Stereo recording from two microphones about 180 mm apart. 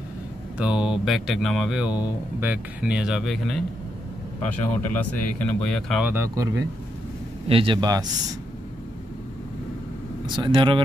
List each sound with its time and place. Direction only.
0.6 s speech: 5° right (ahead or behind)
6.0 s speech: 15° right (ahead or behind)
7.4 s a man's voice: 30° right (ahead or behind)
10.2 s a man's voice: 25° right (ahead or behind)